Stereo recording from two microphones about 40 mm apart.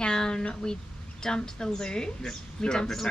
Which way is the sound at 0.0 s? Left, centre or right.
Left.